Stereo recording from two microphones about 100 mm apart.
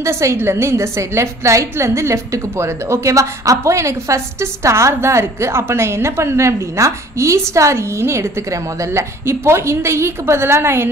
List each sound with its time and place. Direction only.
0.0 s a woman's voice: 30° right (ahead or behind)